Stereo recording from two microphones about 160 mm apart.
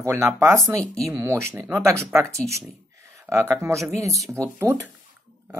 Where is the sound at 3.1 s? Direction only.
15° right (ahead or behind).